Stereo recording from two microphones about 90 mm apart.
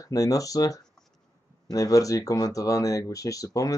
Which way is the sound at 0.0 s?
40° left (ahead or behind).